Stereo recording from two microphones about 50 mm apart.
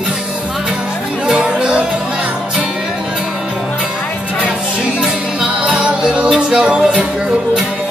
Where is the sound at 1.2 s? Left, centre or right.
Centre.